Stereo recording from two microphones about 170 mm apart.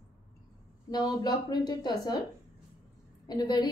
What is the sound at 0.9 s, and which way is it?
A woman's voice, 25° left (ahead or behind).